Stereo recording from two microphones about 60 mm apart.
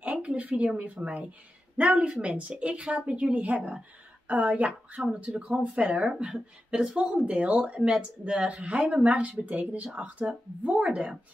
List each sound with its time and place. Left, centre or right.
0.0 s a woman's voice: right